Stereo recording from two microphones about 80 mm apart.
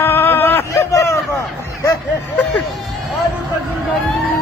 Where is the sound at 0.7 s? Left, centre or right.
Left.